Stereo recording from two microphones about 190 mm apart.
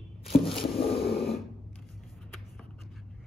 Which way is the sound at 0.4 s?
30° left (ahead or behind).